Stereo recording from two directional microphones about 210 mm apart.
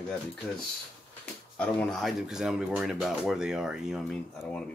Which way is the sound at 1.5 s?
Centre (ahead or behind).